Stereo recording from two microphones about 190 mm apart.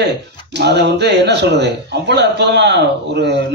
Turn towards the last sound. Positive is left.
turn(degrees=-65)  # may be behind; listen again after turning